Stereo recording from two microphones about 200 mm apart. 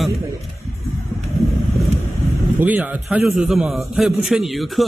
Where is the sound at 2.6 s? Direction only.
10° right (ahead or behind).